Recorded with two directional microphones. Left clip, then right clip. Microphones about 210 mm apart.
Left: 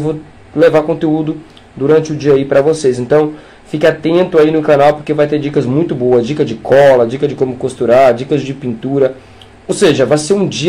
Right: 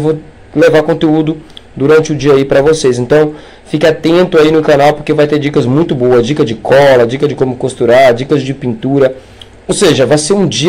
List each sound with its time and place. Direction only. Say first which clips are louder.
0.6 s speech: right 2 dB; 20° right (ahead or behind)